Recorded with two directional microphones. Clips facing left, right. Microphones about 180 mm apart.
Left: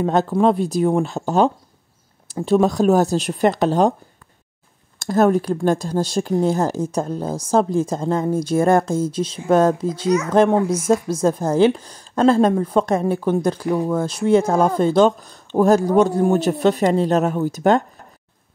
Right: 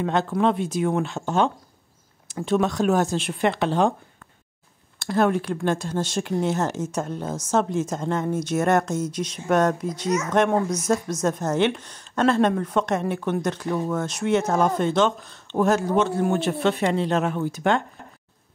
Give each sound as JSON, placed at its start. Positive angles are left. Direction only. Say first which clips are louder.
{"t": 0.0, "sound": "speech", "louder": "left 5 dB", "side_deg": 40}
{"t": 4.9, "sound": "speech", "louder": "left 5 dB", "side_deg": 45}